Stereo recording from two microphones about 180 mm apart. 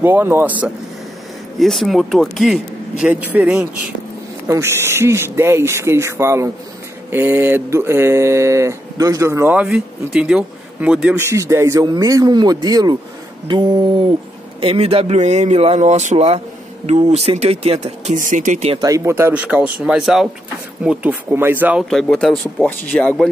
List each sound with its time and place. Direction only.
0.0 s mantra: 10° right (ahead or behind)
1.6 s speech: centre (ahead or behind)
4.5 s mantra: 15° right (ahead or behind)
14.6 s speech: 30° right (ahead or behind)
18.8 s mantra: 20° right (ahead or behind)
21.8 s speech: centre (ahead or behind)